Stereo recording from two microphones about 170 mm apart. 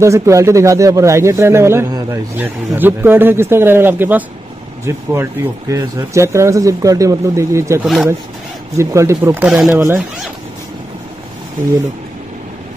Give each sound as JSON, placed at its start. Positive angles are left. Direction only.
{"t": 0.0, "sound": "speech", "side_deg": -15}
{"t": 7.8, "sound": "speech", "side_deg": -5}
{"t": 8.7, "sound": "speech", "side_deg": -15}